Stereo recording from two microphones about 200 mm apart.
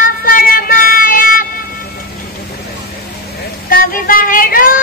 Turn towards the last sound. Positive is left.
turn(degrees=45)  # may be behind; listen again after turning